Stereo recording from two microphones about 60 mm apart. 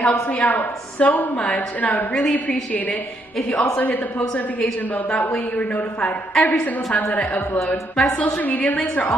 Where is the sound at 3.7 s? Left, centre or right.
Left.